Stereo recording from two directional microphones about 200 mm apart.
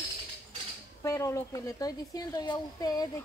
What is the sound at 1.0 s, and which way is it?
A woman's voice, 15° left (ahead or behind).